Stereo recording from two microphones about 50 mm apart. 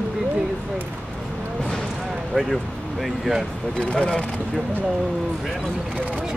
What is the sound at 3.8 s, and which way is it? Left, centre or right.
Speech, centre.